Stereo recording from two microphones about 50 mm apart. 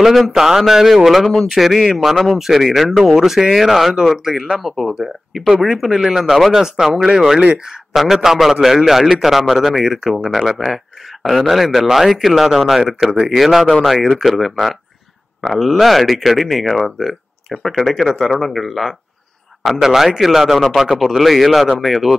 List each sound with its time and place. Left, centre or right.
0.0 s a man's voice: centre
2.3 s a man's voice: centre
2.9 s speech: centre
3.2 s a man's voice: centre